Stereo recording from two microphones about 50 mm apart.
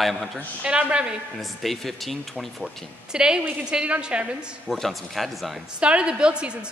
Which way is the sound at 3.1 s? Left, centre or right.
Centre.